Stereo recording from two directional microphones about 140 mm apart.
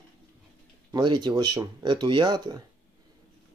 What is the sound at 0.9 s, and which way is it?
Speech, 30° right (ahead or behind).